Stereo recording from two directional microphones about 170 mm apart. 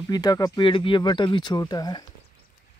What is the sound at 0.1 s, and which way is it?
Speech, 25° left (ahead or behind).